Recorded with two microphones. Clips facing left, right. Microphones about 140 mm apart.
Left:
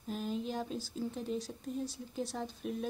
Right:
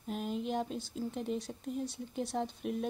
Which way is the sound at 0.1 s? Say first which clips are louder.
Right 1 dB; 60° right (ahead or behind).